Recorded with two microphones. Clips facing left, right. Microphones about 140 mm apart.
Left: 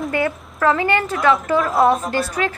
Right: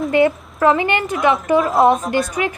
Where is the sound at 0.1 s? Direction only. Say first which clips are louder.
Right 6 dB; 25° right (ahead or behind).